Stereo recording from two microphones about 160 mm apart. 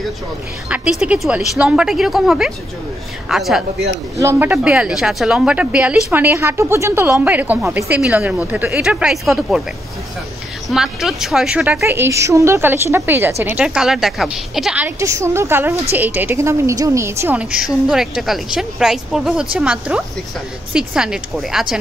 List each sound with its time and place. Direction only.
0.7 s a woman's voice: 10° right (ahead or behind)
4.2 s a woman's voice: 15° right (ahead or behind)
10.7 s a woman's voice: centre (ahead or behind)
15.0 s a woman's voice: 20° right (ahead or behind); by 21.7 s centre (ahead or behind)